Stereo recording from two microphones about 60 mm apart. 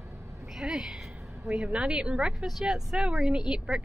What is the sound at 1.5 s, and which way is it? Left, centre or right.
Speech, centre.